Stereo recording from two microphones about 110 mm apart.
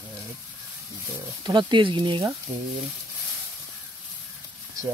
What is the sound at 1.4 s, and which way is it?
Speech, 45° right (ahead or behind).